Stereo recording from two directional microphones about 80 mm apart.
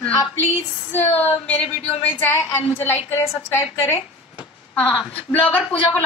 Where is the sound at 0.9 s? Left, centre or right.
Left.